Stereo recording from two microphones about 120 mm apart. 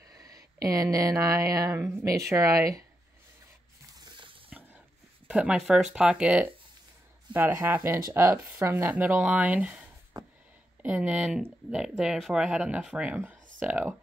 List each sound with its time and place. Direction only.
0.0 s speech: 30° right (ahead or behind)
3.9 s water: 40° right (ahead or behind)
5.3 s speech: 10° right (ahead or behind)